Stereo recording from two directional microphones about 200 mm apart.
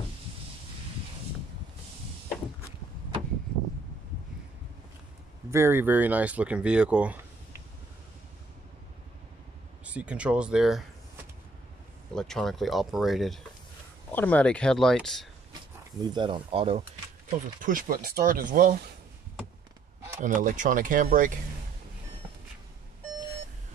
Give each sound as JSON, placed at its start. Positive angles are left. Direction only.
{"t": 5.5, "sound": "speech", "side_deg": -10}
{"t": 9.8, "sound": "speech", "side_deg": -5}
{"t": 12.2, "sound": "speech", "side_deg": 0}
{"t": 16.0, "sound": "speech", "side_deg": -20}
{"t": 17.6, "sound": "speech", "side_deg": -40}
{"t": 20.2, "sound": "speech", "side_deg": -40}